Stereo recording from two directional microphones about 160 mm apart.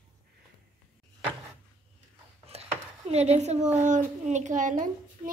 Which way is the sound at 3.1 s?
45° right (ahead or behind).